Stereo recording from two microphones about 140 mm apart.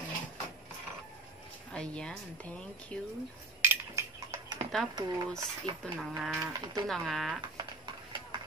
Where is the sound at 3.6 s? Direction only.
20° right (ahead or behind).